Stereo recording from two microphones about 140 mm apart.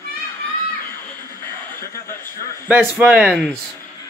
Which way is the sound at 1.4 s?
15° left (ahead or behind).